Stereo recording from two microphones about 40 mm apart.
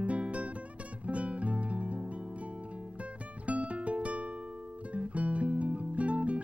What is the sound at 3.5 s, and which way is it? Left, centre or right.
Music, right.